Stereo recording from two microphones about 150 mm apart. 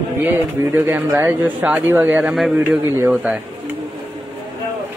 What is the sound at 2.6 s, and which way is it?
Speech, 20° right (ahead or behind).